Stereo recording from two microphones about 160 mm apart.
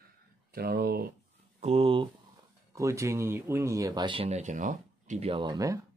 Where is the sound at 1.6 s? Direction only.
40° right (ahead or behind).